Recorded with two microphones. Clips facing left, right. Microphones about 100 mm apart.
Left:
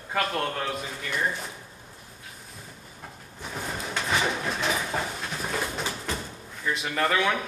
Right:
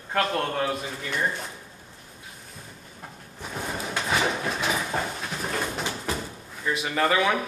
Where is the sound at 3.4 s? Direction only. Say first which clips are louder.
Right 2 dB; 5° right (ahead or behind).